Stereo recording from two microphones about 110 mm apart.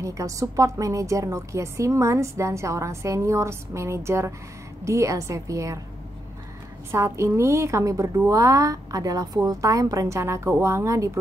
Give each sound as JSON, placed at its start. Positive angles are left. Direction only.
{"t": 0.0, "sound": "a woman's voice", "side_deg": -30}
{"t": 6.9, "sound": "a woman's voice", "side_deg": -25}